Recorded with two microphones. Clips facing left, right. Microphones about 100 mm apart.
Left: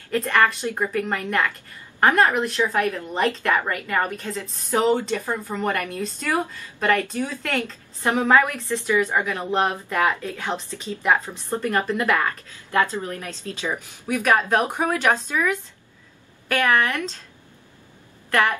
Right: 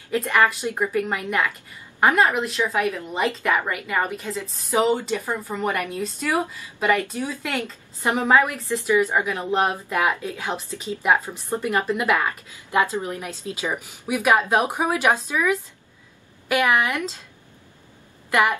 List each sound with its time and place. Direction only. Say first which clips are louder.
0.1 s a woman's voice: even; 5° right (ahead or behind)
8.1 s a woman's voice: even; 15° right (ahead or behind)
18.3 s a woman's voice: right 1 dB; 15° right (ahead or behind)